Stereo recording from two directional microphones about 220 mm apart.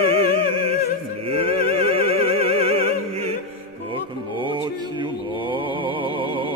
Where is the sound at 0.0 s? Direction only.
25° right (ahead or behind).